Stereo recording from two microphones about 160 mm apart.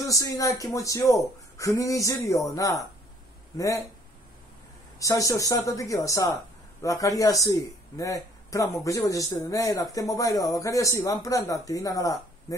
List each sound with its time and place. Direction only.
0.0 s speech: 20° left (ahead or behind)
4.9 s speech: 20° left (ahead or behind)